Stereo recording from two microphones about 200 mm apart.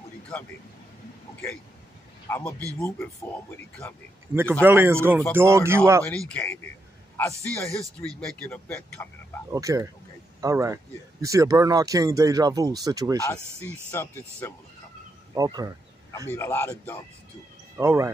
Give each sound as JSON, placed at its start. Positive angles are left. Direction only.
{"t": 2.2, "sound": "a man's voice", "side_deg": 10}
{"t": 4.3, "sound": "speech", "side_deg": -10}
{"t": 6.0, "sound": "speech", "side_deg": 5}
{"t": 9.5, "sound": "speech", "side_deg": -15}
{"t": 13.2, "sound": "speech", "side_deg": 15}
{"t": 15.3, "sound": "speech", "side_deg": -20}
{"t": 16.3, "sound": "speech", "side_deg": 10}
{"t": 17.7, "sound": "speech", "side_deg": -15}